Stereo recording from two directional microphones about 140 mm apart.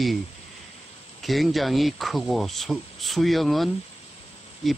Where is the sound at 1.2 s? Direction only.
Centre (ahead or behind).